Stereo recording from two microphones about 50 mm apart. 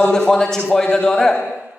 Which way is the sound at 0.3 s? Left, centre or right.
Centre.